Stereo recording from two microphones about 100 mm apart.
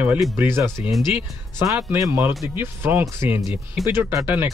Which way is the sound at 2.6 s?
20° right (ahead or behind).